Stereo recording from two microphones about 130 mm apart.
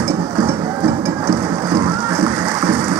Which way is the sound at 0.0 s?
20° right (ahead or behind).